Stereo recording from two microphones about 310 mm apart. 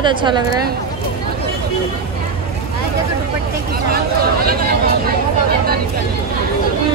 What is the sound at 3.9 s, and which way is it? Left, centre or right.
Speech, right.